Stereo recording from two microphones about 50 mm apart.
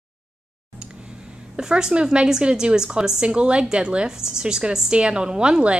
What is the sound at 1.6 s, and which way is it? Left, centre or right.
A woman's voice, centre.